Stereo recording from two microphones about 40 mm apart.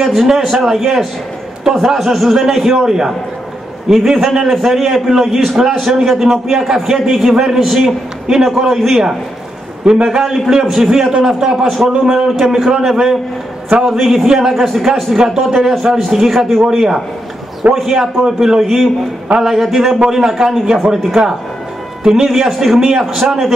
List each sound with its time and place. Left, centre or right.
0.0 s a man's voice: centre
9.8 s a man's voice: right
10.1 s a man's voice: centre
11.6 s a man's voice: centre
16.6 s a man's voice: centre
18.2 s a man's voice: centre
18.6 s a man's voice: centre
20.0 s a man's voice: centre